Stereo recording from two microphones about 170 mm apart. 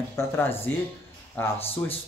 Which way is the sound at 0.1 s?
15° left (ahead or behind).